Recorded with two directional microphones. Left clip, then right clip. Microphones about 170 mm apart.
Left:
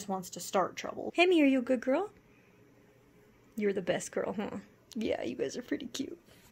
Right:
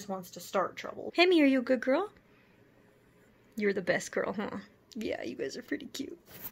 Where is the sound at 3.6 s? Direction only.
5° left (ahead or behind).